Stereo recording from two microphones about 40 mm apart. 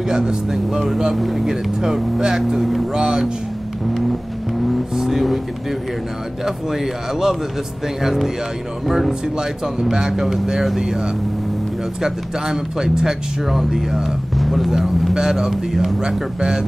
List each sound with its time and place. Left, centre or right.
0.1 s speech: centre
4.6 s speech: centre
6.4 s speech: centre
9.2 s speech: centre
15.5 s speech: centre
16.0 s speech: centre